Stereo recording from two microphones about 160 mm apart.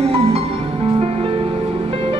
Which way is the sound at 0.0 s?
35° right (ahead or behind).